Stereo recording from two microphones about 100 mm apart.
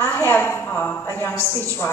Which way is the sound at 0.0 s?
25° left (ahead or behind).